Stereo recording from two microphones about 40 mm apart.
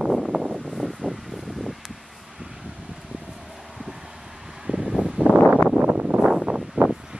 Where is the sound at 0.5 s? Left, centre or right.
Centre.